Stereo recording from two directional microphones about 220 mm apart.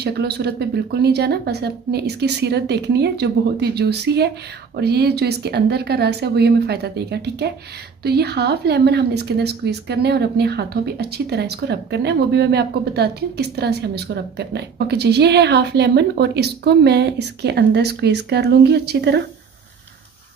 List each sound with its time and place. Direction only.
0.0 s a woman's voice: 45° right (ahead or behind)